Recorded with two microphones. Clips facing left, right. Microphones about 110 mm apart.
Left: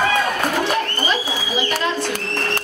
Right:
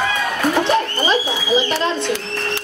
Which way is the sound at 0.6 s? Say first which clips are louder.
Right 3 dB; 25° right (ahead or behind).